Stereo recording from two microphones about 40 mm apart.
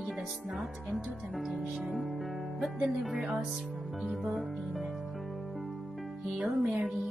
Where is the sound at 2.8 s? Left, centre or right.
Right.